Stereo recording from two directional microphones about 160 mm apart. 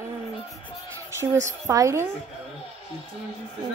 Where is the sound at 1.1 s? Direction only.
20° right (ahead or behind).